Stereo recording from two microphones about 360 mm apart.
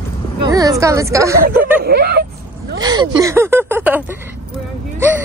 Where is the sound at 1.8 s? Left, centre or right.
Right.